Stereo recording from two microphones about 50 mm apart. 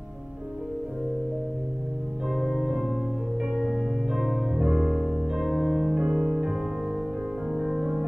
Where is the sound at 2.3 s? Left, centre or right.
Centre.